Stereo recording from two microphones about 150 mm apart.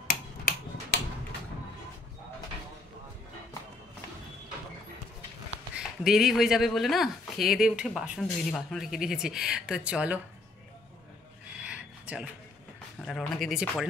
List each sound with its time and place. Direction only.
5.8 s speech: 5° right (ahead or behind)
11.6 s a sound: 5° right (ahead or behind)
13.0 s speech: centre (ahead or behind)